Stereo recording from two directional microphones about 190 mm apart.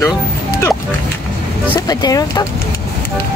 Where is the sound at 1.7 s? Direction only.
20° left (ahead or behind).